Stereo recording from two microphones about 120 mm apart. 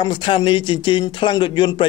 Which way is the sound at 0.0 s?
45° left (ahead or behind).